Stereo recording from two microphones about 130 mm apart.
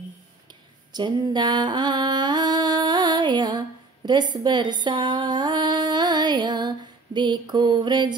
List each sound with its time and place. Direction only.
0.9 s mantra: 35° right (ahead or behind)